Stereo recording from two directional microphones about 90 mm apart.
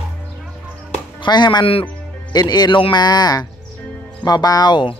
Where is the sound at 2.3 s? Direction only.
50° left (ahead or behind).